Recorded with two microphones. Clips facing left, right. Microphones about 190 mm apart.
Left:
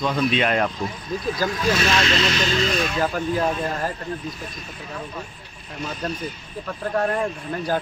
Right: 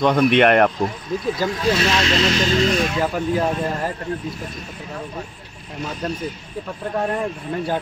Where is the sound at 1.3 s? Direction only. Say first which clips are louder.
Right 1 dB; 25° right (ahead or behind).